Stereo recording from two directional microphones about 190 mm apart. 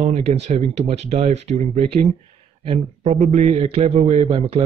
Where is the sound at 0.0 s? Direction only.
35° right (ahead or behind).